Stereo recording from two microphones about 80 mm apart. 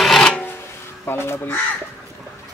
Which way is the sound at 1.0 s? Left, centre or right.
Left.